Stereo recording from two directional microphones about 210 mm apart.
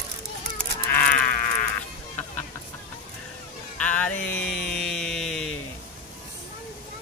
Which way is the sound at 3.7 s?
5° left (ahead or behind).